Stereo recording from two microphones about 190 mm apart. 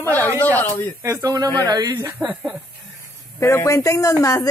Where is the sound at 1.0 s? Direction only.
15° right (ahead or behind).